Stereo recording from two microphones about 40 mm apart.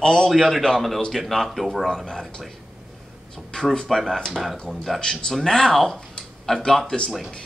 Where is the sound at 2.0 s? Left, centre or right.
Centre.